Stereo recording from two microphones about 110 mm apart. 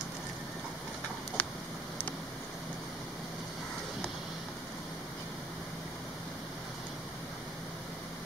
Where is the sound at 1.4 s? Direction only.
15° left (ahead or behind).